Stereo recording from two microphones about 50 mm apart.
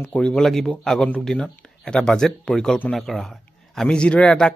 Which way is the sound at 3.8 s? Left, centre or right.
Left.